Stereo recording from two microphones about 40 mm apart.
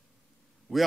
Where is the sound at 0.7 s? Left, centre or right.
Centre.